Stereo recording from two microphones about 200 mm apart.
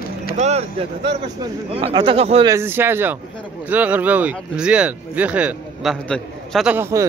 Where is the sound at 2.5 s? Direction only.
10° right (ahead or behind).